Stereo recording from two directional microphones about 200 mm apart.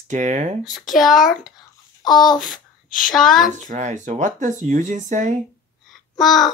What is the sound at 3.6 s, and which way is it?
Speech, 35° right (ahead or behind).